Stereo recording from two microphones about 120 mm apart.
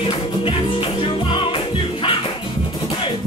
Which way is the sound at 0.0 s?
45° left (ahead or behind).